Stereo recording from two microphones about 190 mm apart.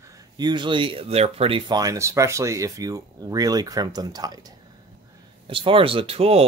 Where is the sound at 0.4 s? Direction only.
25° right (ahead or behind).